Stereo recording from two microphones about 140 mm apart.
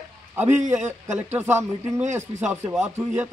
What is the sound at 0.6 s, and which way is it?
A man's voice, 20° right (ahead or behind).